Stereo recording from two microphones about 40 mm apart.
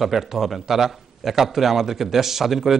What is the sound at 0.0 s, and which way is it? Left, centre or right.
A man's voice, centre.